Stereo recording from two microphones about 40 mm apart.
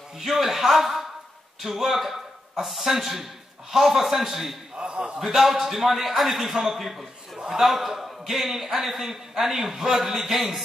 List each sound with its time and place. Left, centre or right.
0.2 s a man's voice: centre
4.7 s a man's voice: right
5.2 s a man's voice: centre
7.3 s chuckle: centre
7.6 s a man's voice: centre